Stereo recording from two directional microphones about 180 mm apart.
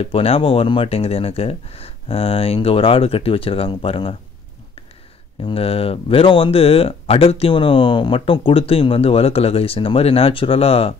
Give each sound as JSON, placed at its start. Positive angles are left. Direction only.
{"t": 0.0, "sound": "speech", "side_deg": 30}
{"t": 5.4, "sound": "speech", "side_deg": 30}